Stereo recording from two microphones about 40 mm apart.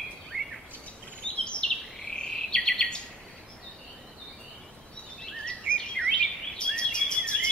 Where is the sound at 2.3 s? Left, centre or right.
Centre.